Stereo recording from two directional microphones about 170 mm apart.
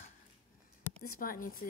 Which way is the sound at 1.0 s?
55° left (ahead or behind).